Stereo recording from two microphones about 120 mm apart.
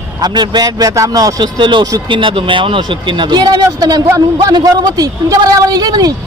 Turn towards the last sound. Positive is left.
turn(degrees=-35)  # may be behind; listen again after turning